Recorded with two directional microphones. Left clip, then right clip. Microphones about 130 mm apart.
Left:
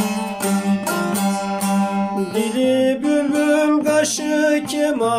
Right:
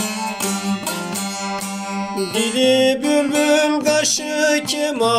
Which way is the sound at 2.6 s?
Centre (ahead or behind).